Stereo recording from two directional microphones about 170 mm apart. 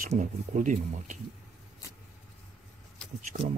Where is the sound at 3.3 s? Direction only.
40° right (ahead or behind).